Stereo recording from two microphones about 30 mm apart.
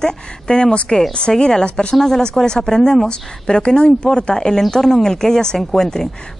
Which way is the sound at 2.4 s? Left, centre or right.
Left.